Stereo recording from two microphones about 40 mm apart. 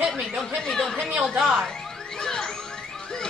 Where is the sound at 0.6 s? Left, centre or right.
Centre.